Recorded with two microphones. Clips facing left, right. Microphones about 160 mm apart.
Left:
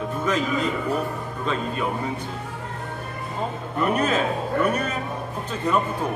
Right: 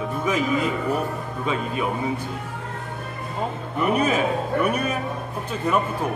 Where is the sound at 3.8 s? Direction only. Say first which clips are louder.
Right 1 dB; 10° right (ahead or behind).